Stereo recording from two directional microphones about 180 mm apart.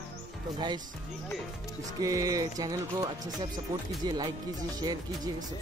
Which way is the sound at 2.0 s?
20° right (ahead or behind).